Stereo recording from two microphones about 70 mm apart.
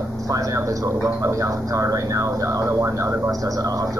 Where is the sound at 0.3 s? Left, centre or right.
Right.